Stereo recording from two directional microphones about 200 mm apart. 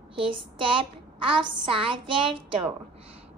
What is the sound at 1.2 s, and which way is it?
A woman's voice, 25° right (ahead or behind).